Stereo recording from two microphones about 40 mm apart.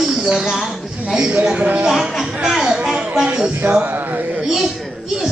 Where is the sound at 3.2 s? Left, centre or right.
Right.